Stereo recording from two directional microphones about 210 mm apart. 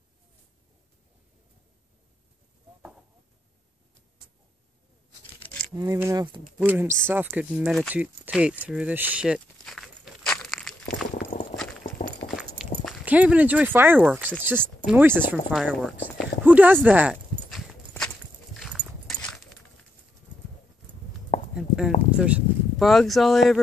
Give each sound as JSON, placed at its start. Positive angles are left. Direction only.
{"t": 5.4, "sound": "a sound", "side_deg": 5}
{"t": 5.8, "sound": "speech", "side_deg": -15}
{"t": 6.6, "sound": "speech", "side_deg": -10}
{"t": 8.6, "sound": "walk", "side_deg": -5}
{"t": 12.0, "sound": "clip-clop", "side_deg": 0}
{"t": 12.8, "sound": "speech", "side_deg": -5}
{"t": 16.8, "sound": "clip-clop", "side_deg": -5}
{"t": 21.5, "sound": "a sound", "side_deg": -5}
{"t": 22.1, "sound": "speech", "side_deg": -5}